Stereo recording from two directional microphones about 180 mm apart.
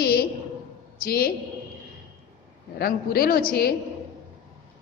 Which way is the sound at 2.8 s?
60° left (ahead or behind).